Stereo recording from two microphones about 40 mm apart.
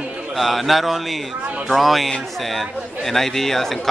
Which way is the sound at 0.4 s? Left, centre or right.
Centre.